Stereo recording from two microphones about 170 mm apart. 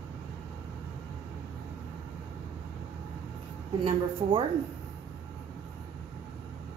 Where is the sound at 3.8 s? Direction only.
30° right (ahead or behind).